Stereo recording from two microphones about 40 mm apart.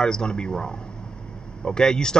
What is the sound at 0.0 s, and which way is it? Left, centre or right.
Speech, left.